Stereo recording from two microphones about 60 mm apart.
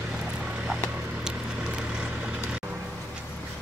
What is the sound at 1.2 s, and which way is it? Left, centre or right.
Vehicle, centre.